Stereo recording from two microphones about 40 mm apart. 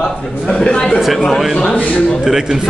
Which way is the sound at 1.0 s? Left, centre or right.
Centre.